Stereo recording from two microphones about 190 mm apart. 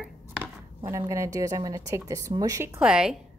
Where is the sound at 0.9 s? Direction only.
15° right (ahead or behind).